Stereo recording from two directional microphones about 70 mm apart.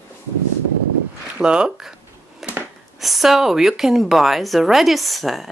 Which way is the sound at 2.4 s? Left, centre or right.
Centre.